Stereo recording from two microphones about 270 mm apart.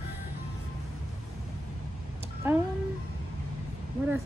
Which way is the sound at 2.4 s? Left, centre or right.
Centre.